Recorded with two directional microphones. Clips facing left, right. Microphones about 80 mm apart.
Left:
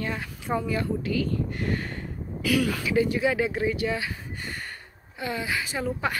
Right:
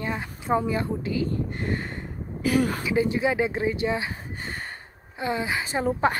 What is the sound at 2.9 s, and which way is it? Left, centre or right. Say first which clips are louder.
Speech: even; right.